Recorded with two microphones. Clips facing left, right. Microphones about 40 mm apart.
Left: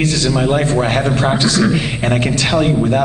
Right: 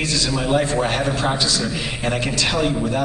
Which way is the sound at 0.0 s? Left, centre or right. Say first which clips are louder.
Left 6 dB; left.